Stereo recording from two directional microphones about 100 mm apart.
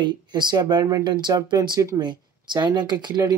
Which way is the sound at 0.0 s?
45° right (ahead or behind).